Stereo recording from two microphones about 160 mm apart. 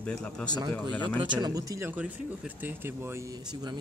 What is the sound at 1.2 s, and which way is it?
Speech, 30° right (ahead or behind).